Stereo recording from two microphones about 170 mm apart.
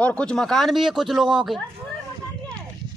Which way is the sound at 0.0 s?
5° left (ahead or behind).